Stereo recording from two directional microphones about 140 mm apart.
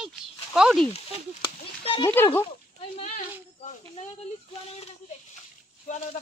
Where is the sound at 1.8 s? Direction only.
40° left (ahead or behind).